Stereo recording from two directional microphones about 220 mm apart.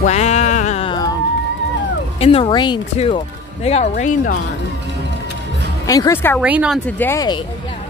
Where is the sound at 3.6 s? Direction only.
30° left (ahead or behind).